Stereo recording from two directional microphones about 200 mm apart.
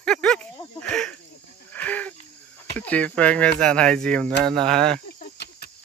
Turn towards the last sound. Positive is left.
turn(degrees=50)  # may be behind; listen again after turning